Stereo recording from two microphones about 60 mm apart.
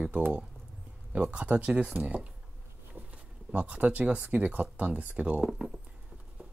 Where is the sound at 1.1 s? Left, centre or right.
Right.